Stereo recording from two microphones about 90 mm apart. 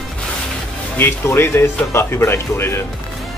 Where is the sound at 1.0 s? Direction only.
25° left (ahead or behind).